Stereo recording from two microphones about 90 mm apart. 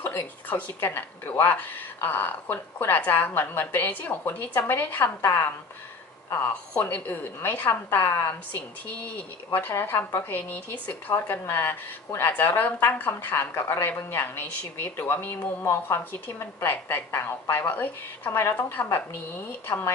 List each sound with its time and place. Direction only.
0.0 s a woman's voice: 20° left (ahead or behind)